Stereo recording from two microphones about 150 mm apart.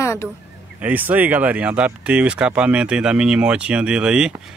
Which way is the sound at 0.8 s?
10° right (ahead or behind).